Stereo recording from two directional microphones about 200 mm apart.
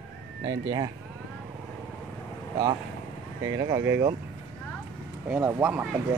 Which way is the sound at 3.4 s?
20° right (ahead or behind).